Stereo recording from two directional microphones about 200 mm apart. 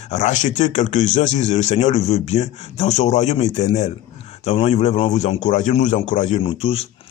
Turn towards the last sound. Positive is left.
turn(degrees=30)  # may be behind; listen again after turning